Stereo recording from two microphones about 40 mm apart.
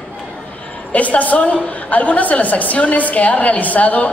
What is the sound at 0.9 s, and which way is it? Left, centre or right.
A woman's voice, left.